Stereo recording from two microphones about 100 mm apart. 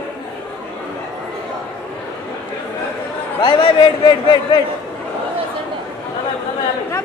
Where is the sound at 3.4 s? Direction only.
55° left (ahead or behind).